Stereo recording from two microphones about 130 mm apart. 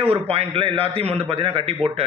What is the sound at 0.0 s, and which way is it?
A man's voice, 50° right (ahead or behind).